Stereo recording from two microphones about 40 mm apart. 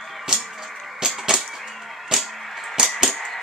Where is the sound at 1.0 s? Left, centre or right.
Centre.